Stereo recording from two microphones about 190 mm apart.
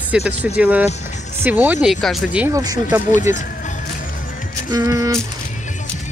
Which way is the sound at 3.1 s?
40° left (ahead or behind).